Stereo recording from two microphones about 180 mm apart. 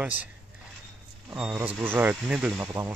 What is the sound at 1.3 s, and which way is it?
Speech, 5° right (ahead or behind).